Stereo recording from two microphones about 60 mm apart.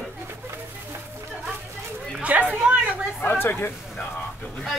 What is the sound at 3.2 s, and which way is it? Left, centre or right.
Speech, left.